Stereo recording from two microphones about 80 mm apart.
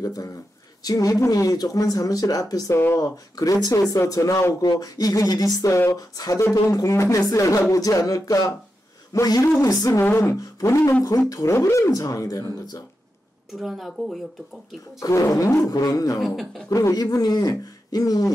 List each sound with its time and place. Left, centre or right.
0.0 s speech: left
2.7 s speech: left
3.0 s speech: left
4.6 s speech: left
6.1 s speech: left
9.9 s speech: left
13.5 s speech: centre
15.0 s speech: left
16.2 s speech: centre
16.6 s speech: left